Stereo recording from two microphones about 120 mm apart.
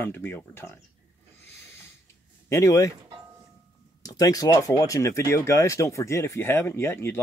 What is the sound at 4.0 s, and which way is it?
Speech, 30° left (ahead or behind).